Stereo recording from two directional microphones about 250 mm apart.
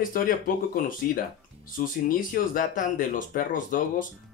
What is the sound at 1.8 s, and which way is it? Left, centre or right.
Speech, left.